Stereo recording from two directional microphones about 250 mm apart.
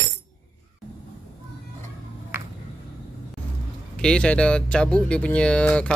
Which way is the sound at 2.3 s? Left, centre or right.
Centre.